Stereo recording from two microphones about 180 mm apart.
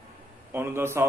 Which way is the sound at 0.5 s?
15° right (ahead or behind).